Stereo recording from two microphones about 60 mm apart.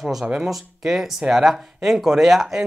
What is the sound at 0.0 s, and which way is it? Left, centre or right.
Speech, centre.